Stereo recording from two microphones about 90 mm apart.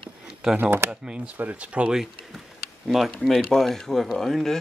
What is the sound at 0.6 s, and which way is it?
Speech, 20° right (ahead or behind).